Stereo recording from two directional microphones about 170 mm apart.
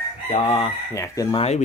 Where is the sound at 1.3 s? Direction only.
35° left (ahead or behind).